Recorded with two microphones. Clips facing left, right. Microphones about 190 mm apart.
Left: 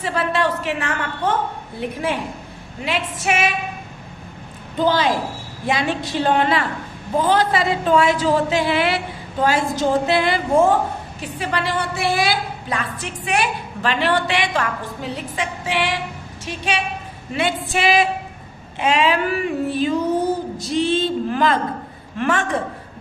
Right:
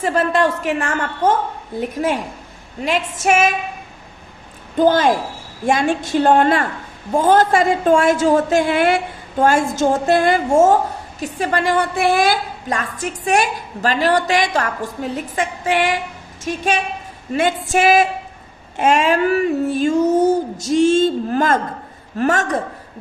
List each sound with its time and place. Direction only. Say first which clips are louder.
0.0 s a woman's voice: right 4 dB; 45° right (ahead or behind)
2.8 s a woman's voice: right 4 dB; 45° right (ahead or behind)
4.7 s a woman's voice: right 4 dB; 45° right (ahead or behind)